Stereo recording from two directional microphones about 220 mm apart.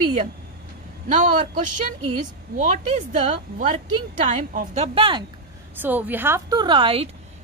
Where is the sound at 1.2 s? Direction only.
35° right (ahead or behind).